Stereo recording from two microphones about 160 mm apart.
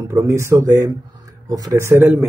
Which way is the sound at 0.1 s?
15° right (ahead or behind).